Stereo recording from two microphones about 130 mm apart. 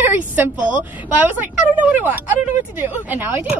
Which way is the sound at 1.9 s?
15° right (ahead or behind).